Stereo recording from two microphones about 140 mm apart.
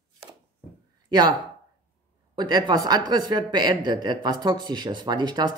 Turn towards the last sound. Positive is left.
turn(degrees=-30)  # may be behind; listen again after turning